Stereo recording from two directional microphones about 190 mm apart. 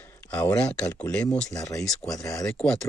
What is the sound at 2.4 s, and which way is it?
Speech, centre (ahead or behind).